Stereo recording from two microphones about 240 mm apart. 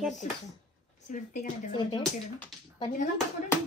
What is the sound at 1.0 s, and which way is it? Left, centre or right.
Speech, left.